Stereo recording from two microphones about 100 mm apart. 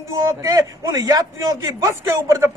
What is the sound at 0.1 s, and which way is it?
A man's voice, 35° right (ahead or behind).